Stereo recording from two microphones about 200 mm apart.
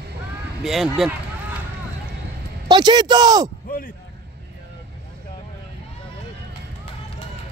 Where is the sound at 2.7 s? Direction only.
20° right (ahead or behind).